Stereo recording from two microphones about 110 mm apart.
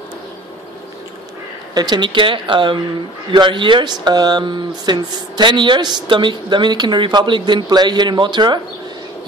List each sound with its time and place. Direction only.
1.7 s speech: 40° right (ahead or behind)